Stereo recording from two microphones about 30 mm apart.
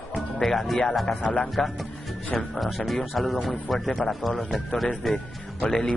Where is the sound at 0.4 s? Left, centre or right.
Centre.